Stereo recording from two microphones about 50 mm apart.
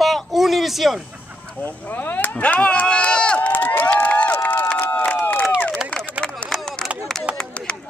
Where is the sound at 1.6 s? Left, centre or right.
Left.